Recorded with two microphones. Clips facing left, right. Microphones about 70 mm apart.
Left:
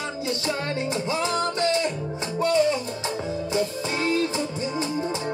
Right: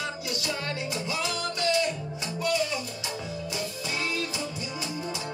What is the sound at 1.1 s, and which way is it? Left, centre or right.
Music, left.